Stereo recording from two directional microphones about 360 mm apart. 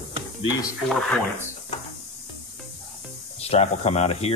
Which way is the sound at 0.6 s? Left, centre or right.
Centre.